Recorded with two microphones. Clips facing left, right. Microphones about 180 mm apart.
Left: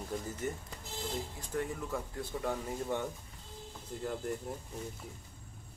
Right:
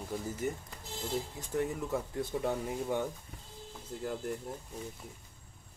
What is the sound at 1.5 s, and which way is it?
Speech, 20° right (ahead or behind).